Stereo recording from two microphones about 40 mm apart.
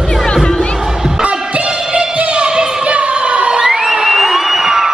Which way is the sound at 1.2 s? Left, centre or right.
Right.